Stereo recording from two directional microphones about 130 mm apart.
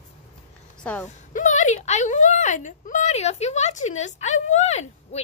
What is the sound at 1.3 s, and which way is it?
Speech, 70° left (ahead or behind).